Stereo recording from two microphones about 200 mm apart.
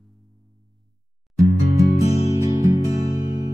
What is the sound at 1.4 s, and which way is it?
Music, 15° right (ahead or behind).